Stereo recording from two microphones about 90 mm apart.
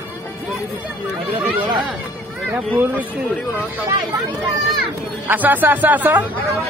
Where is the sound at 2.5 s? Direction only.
20° right (ahead or behind).